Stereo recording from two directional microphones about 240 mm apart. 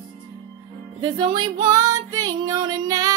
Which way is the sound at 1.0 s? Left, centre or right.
Centre.